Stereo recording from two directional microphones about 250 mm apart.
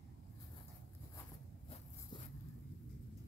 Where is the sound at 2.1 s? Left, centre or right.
Centre.